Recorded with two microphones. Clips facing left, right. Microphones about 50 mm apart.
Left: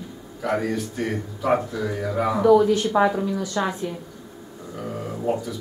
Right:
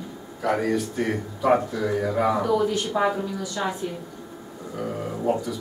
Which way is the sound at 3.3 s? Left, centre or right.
Centre.